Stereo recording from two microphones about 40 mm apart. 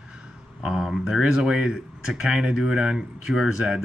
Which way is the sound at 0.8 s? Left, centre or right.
Centre.